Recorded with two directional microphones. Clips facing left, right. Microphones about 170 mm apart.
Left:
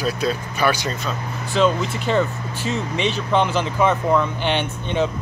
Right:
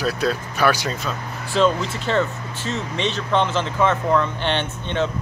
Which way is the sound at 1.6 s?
10° left (ahead or behind).